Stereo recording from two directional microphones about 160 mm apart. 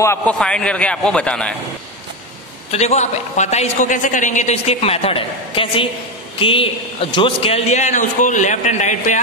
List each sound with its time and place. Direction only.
0.0 s a man's voice: 10° left (ahead or behind)
2.7 s a woman's voice: 45° left (ahead or behind)